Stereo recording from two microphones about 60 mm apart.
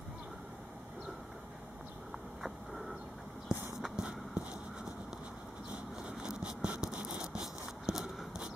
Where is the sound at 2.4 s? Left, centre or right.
Centre.